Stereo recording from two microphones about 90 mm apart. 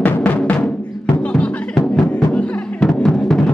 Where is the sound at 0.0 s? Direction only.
15° left (ahead or behind).